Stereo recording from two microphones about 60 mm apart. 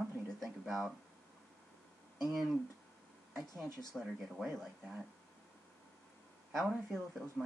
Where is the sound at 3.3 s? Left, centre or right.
Centre.